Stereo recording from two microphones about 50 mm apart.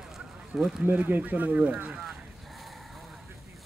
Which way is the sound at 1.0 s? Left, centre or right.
Right.